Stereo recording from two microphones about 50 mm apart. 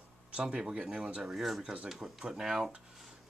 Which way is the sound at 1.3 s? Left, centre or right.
Centre.